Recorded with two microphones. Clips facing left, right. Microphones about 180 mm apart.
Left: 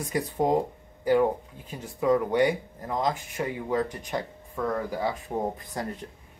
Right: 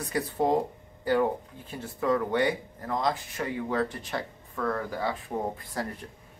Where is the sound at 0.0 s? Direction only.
15° left (ahead or behind).